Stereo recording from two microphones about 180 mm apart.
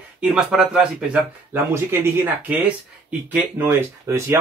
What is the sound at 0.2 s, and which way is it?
Speech, 5° right (ahead or behind).